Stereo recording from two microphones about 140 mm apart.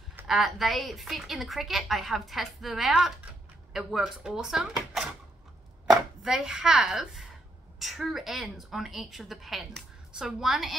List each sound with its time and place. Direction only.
0.3 s a woman's voice: centre (ahead or behind)